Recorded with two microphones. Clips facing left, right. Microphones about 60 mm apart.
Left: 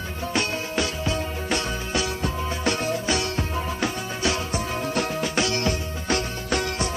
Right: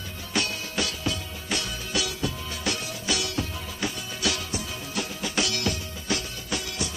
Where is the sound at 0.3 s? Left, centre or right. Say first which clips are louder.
Left 3 dB; left.